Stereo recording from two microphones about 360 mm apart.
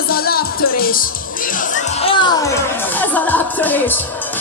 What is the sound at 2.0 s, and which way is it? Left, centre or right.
Speech, centre.